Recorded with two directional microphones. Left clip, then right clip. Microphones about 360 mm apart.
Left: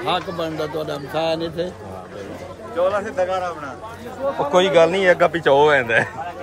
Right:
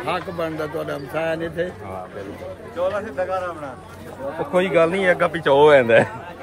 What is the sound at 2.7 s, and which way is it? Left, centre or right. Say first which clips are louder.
Speech: left 4 dB; left.